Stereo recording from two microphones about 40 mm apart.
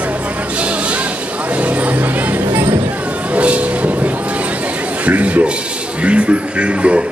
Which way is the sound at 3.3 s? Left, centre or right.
Right.